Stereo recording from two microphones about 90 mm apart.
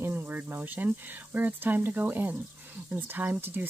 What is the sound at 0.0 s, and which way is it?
Speech, 25° right (ahead or behind).